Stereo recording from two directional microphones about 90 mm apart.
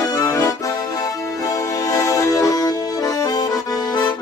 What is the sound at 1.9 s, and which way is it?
Accordion, 40° left (ahead or behind).